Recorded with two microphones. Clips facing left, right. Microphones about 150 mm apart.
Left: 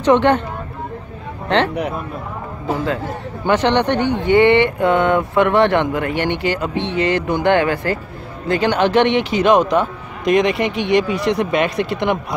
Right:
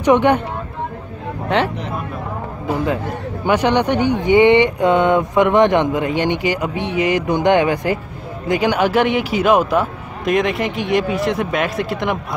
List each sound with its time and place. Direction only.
0.0 s speech: 10° right (ahead or behind)
3.4 s a man's voice: 10° right (ahead or behind)